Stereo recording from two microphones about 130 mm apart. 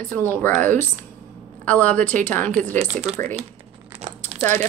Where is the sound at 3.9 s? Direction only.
55° right (ahead or behind).